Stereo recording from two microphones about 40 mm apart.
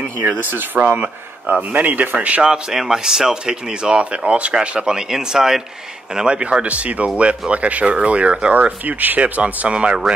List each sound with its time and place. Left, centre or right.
0.3 s speech: right
2.1 s speech: right
2.5 s speech: centre
6.1 s speech: right
6.6 s speech: right
9.7 s speech: right